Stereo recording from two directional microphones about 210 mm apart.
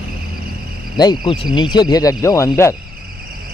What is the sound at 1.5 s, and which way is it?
Speech, 20° left (ahead or behind).